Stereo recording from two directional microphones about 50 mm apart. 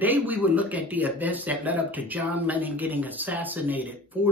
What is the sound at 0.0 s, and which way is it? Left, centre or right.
Speech, right.